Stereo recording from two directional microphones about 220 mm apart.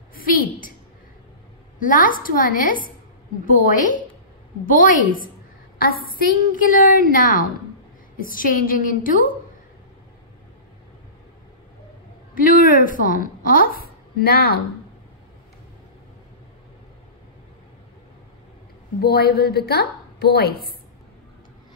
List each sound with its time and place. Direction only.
0.1 s a sound: 40° left (ahead or behind)
1.8 s a woman's voice: 40° left (ahead or behind)
6.0 s a woman's voice: 40° left (ahead or behind)
12.4 s a woman's voice: 40° left (ahead or behind)
18.9 s a woman's voice: 45° left (ahead or behind)